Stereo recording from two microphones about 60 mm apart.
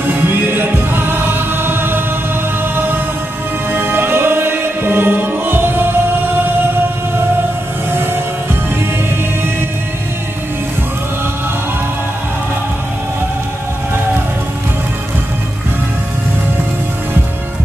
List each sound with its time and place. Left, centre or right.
0.0 s music: right
7.9 s music: right